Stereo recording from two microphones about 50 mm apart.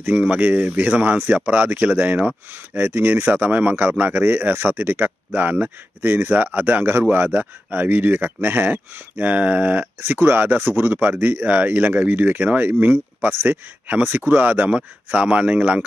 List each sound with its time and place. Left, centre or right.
0.1 s speech: right
9.9 s speech: right
13.3 s speech: right
13.8 s speech: right